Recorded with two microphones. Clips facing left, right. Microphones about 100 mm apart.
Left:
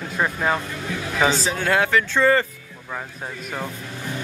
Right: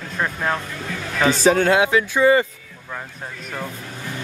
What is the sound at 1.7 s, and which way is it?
Speech, 15° right (ahead or behind).